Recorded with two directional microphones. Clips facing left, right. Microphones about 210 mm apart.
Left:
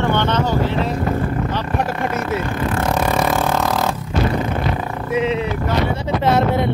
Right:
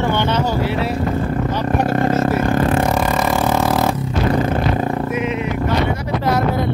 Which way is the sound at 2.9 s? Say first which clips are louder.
Even; centre (ahead or behind).